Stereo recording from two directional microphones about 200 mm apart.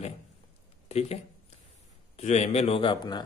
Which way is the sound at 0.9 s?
30° left (ahead or behind).